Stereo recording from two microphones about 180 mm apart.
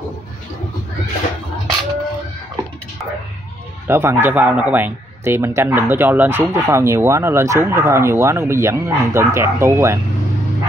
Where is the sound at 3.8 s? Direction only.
15° right (ahead or behind).